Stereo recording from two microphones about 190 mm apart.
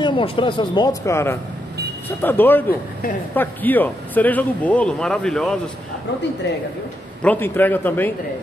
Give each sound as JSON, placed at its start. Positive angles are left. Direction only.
{"t": 0.0, "sound": "speech", "side_deg": 25}
{"t": 7.2, "sound": "speech", "side_deg": 10}